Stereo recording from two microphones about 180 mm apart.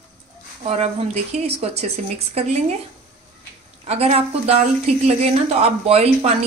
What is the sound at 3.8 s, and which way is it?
A woman's voice, 35° right (ahead or behind).